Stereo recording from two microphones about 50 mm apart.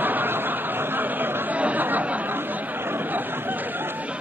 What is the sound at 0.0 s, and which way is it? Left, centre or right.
Chatter, right.